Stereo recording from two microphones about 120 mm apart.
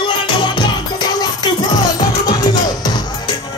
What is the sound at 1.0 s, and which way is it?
Music, 35° left (ahead or behind).